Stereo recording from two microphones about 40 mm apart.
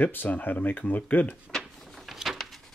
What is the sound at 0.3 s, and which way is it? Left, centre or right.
Speech, left.